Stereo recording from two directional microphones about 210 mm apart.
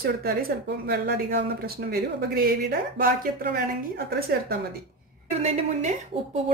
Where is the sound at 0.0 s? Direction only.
45° right (ahead or behind).